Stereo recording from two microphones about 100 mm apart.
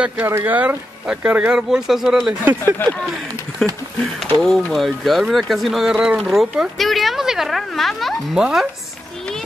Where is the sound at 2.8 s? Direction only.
20° left (ahead or behind).